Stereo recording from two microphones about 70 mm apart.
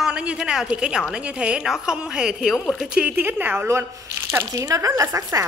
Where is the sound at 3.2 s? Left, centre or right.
Right.